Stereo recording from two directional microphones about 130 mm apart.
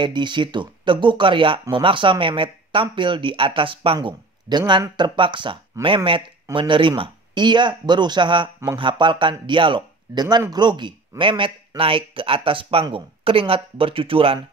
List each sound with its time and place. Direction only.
0.0 s speech: 35° right (ahead or behind)